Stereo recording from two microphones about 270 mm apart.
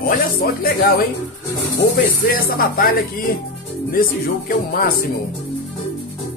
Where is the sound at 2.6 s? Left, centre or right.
Left.